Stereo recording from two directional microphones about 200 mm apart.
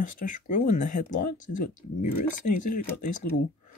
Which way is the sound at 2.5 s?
40° left (ahead or behind).